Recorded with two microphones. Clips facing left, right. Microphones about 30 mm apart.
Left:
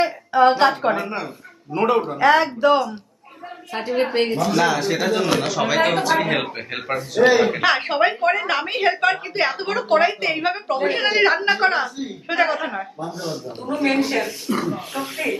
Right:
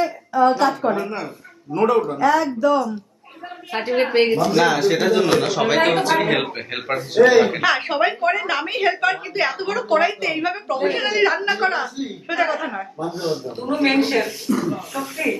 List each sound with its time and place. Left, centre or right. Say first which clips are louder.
0.0 s a woman's voice: left 1 dB; left
1.0 s speech: even; centre
2.1 s speech: left 2 dB; left
3.7 s a man's voice: right 2 dB; centre
7.6 s a woman's voice: left 1 dB; centre
13.1 s a woman's voice: right 4 dB; right
14.5 s speech: right 2 dB; left
14.9 s speech: even; left